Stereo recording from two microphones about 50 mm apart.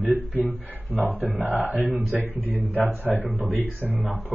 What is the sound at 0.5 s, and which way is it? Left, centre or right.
A man's voice, right.